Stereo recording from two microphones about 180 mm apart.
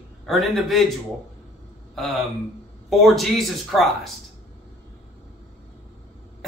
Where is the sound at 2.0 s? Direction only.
Centre (ahead or behind).